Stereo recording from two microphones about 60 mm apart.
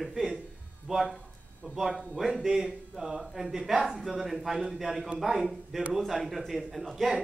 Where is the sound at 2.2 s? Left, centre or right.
Centre.